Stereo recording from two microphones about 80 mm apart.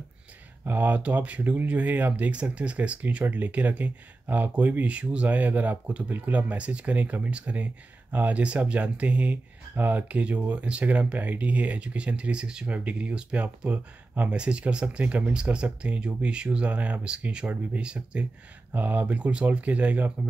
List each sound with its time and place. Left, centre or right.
0.7 s speech: right